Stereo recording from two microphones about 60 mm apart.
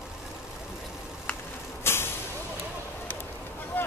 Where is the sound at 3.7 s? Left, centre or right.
Left.